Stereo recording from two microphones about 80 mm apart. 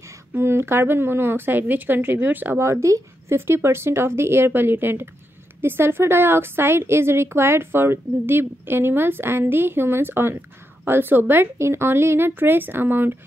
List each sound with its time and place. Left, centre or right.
0.3 s a woman's voice: right
2.6 s a woman's voice: right